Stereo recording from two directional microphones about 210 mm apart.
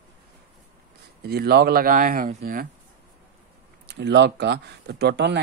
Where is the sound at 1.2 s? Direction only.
50° right (ahead or behind).